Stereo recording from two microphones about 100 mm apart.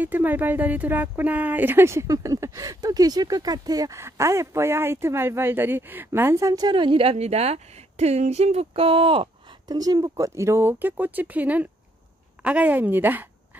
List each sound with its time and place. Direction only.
0.0 s speech: 20° right (ahead or behind); by 4.0 s 40° right (ahead or behind)
4.0 s speech: 30° right (ahead or behind)
6.8 s speech: 65° right (ahead or behind)
9.7 s a woman's voice: 40° right (ahead or behind); by 13.3 s 20° right (ahead or behind)